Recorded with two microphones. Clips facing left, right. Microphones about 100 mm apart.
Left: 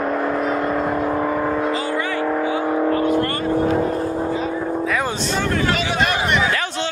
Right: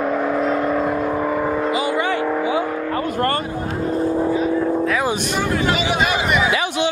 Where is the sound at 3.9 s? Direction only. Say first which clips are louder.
Right 3 dB; centre (ahead or behind).